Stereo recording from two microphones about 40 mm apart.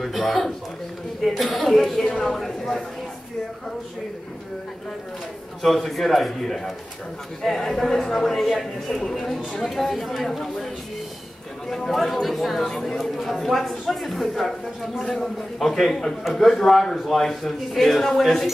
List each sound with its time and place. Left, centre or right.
0.0 s speech: centre
2.0 s speech: centre
2.3 s speech: centre
5.6 s speech: centre
11.7 s speech: centre